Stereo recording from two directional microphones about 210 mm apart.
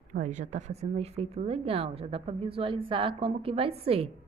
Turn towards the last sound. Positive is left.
turn(degrees=-30)  # may be behind; listen again after turning